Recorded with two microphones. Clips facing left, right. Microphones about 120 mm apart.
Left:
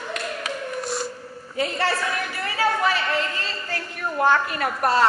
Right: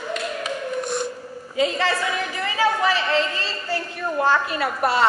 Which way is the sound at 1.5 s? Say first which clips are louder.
Right 4 dB; 90° right.